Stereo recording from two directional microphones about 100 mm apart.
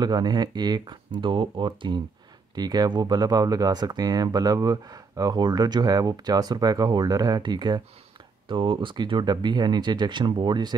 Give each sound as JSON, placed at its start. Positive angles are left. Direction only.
{"t": 0.0, "sound": "speech", "side_deg": -45}
{"t": 1.2, "sound": "speech", "side_deg": -55}
{"t": 2.5, "sound": "speech", "side_deg": -40}
{"t": 8.5, "sound": "speech", "side_deg": -60}